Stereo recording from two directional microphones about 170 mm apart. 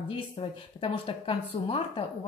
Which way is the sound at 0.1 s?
35° left (ahead or behind).